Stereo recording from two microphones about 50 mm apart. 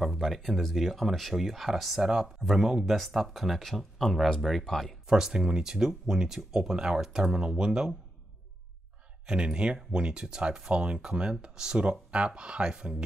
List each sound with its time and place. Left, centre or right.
0.2 s speech: centre
5.0 s speech: centre
9.2 s speech: centre